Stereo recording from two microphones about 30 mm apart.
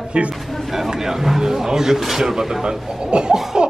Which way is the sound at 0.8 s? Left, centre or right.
Centre.